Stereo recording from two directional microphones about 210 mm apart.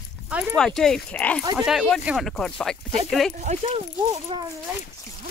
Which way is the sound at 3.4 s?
35° right (ahead or behind).